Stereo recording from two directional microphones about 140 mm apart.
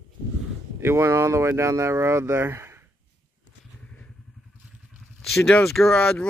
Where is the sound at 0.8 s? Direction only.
20° right (ahead or behind).